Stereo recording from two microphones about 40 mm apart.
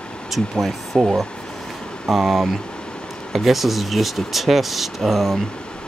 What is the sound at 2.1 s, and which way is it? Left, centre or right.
Speech, centre.